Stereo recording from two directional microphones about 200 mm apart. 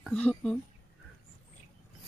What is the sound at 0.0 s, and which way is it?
Speech, 5° left (ahead or behind).